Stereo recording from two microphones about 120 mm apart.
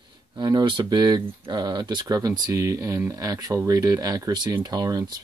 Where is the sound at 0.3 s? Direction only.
35° right (ahead or behind).